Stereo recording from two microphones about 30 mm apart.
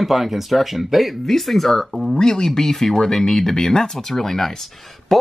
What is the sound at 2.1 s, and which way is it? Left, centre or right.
Speech, left.